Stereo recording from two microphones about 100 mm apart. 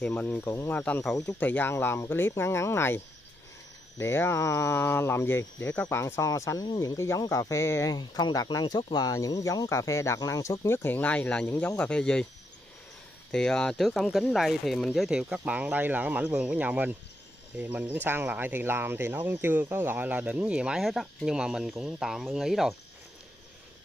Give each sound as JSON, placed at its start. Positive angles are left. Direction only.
{"t": 0.0, "sound": "speech", "side_deg": 15}
{"t": 4.0, "sound": "speech", "side_deg": 25}
{"t": 7.9, "sound": "speech", "side_deg": 45}
{"t": 13.3, "sound": "speech", "side_deg": 5}